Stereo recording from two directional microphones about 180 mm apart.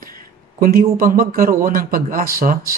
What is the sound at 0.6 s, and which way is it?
A man's voice, 55° right (ahead or behind).